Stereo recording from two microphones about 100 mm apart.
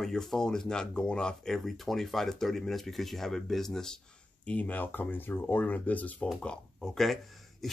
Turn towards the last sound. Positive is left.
turn(degrees=5)  # may be behind; listen again after turning